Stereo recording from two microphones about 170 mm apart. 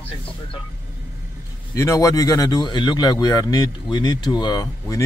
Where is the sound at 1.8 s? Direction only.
20° left (ahead or behind).